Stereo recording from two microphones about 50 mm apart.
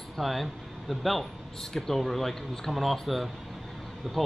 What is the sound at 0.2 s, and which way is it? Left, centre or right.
Speech, centre.